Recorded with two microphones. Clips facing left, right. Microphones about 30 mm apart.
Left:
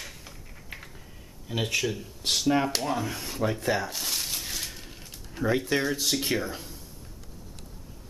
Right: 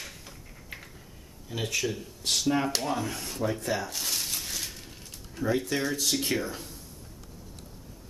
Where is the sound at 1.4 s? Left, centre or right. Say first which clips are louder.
Left 3 dB; left.